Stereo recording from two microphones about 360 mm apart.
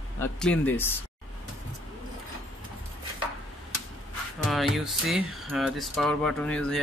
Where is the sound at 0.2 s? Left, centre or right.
Centre.